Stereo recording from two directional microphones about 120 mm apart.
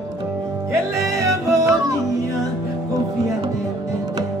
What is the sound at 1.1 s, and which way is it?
Music, 25° right (ahead or behind).